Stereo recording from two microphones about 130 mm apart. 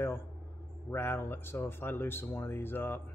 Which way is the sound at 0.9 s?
15° left (ahead or behind).